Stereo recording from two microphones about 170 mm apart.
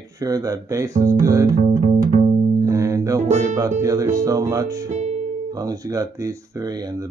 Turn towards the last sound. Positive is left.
turn(degrees=-20)  # may be behind; listen again after turning